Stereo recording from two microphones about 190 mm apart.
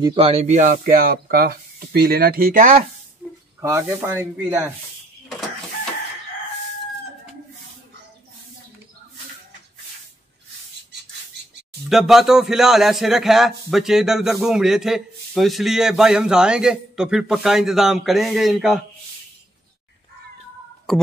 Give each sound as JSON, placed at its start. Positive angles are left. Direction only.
{"t": 0.0, "sound": "speech", "side_deg": -30}
{"t": 3.2, "sound": "snake", "side_deg": -10}
{"t": 3.6, "sound": "speech", "side_deg": -15}
{"t": 11.9, "sound": "a man's voice", "side_deg": 0}
{"t": 20.9, "sound": "a man's voice", "side_deg": 5}